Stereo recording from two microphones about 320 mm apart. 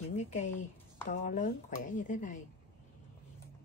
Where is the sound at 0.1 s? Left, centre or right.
Left.